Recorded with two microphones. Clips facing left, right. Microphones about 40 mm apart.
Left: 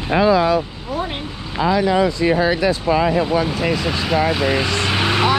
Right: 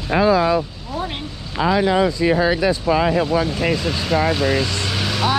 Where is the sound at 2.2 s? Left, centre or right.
Left.